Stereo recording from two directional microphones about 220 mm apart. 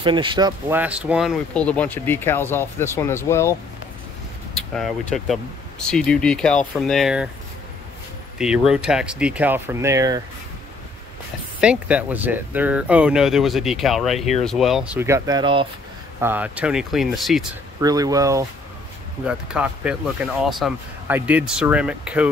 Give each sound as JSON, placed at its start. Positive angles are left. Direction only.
{"t": 0.0, "sound": "speech", "side_deg": -20}
{"t": 4.7, "sound": "speech", "side_deg": 0}
{"t": 8.4, "sound": "speech", "side_deg": -5}
{"t": 11.6, "sound": "speech", "side_deg": -5}
{"t": 16.2, "sound": "speech", "side_deg": -10}
{"t": 17.7, "sound": "speech", "side_deg": -15}